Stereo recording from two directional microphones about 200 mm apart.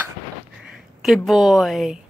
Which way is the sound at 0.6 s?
Centre (ahead or behind).